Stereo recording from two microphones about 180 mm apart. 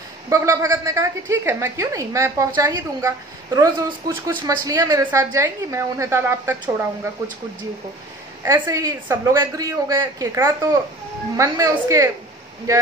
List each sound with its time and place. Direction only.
0.3 s speech: 15° right (ahead or behind)
8.4 s speech: 15° right (ahead or behind)